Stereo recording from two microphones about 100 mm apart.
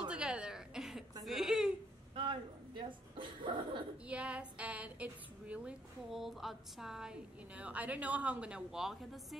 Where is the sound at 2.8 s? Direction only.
55° right (ahead or behind).